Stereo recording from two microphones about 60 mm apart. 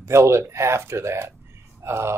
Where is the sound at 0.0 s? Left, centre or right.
Right.